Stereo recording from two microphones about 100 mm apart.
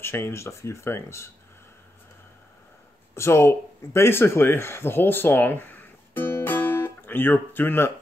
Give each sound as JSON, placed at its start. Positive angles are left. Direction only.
{"t": 0.0, "sound": "speech", "side_deg": 25}
{"t": 3.2, "sound": "speech", "side_deg": 25}